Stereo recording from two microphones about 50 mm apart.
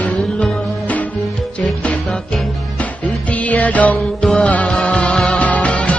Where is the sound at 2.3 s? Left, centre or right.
Left.